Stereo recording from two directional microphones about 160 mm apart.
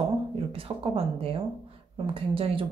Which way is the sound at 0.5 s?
35° right (ahead or behind).